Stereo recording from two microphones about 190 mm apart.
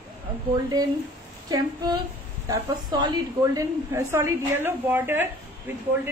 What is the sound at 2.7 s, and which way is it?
A woman's voice, 20° right (ahead or behind).